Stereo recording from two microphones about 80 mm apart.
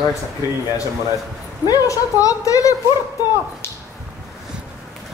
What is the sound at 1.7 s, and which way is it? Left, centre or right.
A woman's voice, left.